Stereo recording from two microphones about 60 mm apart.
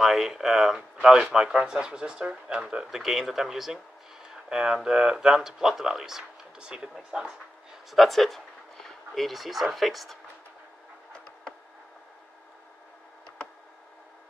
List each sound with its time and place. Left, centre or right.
0.0 s speech: centre
7.9 s speech: centre